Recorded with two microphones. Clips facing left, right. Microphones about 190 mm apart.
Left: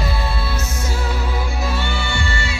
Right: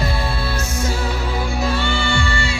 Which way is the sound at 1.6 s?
5° left (ahead or behind).